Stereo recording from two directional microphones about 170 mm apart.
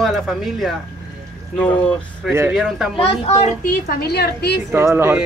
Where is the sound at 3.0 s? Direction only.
35° left (ahead or behind).